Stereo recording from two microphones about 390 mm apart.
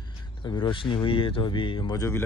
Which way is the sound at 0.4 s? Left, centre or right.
Centre.